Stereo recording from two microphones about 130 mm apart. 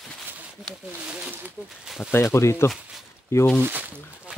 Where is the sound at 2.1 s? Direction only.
20° left (ahead or behind).